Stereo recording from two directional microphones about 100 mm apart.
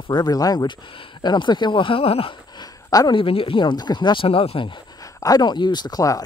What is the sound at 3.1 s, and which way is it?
Speech, 65° left (ahead or behind).